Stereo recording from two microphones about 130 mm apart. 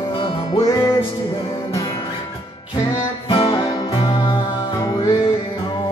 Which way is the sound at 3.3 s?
45° left (ahead or behind).